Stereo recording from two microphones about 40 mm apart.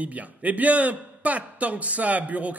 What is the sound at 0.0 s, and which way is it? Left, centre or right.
A man's voice, right.